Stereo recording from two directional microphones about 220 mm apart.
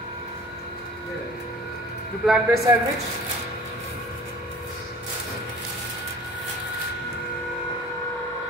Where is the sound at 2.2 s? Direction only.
Centre (ahead or behind).